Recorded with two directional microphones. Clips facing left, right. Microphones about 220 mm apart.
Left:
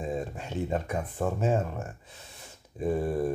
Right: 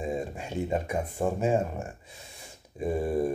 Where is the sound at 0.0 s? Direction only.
10° right (ahead or behind).